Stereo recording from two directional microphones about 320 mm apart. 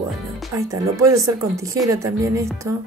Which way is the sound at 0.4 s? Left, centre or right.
Centre.